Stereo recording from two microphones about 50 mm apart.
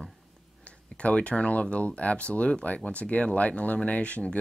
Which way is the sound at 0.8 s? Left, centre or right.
Left.